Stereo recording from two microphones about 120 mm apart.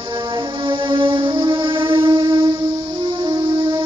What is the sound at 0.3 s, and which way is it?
Music, 40° right (ahead or behind).